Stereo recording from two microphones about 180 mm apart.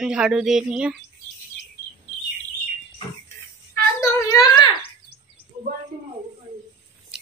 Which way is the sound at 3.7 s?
20° left (ahead or behind).